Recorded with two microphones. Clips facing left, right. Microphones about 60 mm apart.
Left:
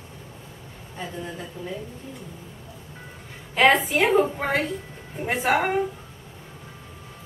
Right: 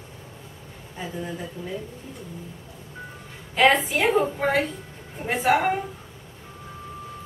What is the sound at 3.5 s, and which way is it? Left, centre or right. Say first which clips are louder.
A woman's voice: left 1 dB; centre.